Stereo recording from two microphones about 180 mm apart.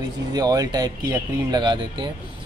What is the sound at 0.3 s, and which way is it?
Speech, 20° right (ahead or behind).